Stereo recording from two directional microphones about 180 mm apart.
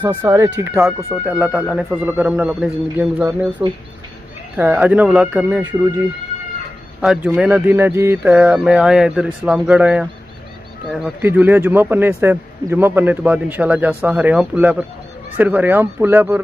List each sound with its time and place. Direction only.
0.0 s a man's voice: 10° right (ahead or behind)
5.6 s speech: 20° right (ahead or behind)
7.0 s speech: 10° right (ahead or behind)
11.2 s a man's voice: 10° right (ahead or behind)